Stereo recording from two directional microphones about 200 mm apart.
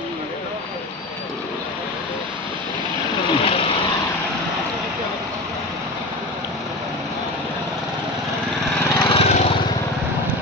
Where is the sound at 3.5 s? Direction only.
30° left (ahead or behind).